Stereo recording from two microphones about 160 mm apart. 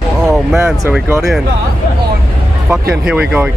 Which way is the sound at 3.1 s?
5° right (ahead or behind).